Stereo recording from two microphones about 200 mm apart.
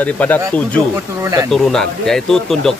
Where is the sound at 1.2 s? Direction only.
20° right (ahead or behind).